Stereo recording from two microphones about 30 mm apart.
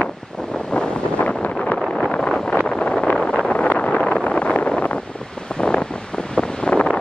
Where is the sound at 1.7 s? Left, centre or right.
Centre.